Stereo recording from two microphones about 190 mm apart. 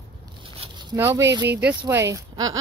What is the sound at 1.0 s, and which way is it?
Speech, 10° right (ahead or behind).